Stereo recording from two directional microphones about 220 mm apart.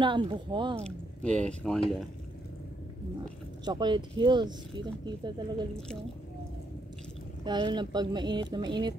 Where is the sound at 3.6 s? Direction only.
20° right (ahead or behind).